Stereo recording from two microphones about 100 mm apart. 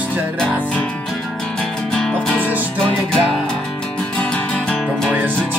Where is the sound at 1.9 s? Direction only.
5° left (ahead or behind).